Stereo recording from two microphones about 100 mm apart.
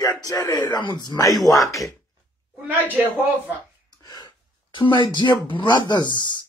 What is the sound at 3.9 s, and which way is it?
Speech, 45° left (ahead or behind).